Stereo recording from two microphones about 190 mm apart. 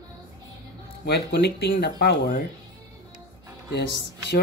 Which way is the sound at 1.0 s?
60° left (ahead or behind).